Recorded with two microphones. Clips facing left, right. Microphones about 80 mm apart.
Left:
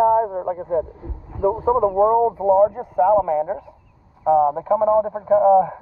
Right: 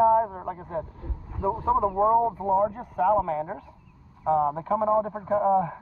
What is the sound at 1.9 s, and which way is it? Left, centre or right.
Speech, left.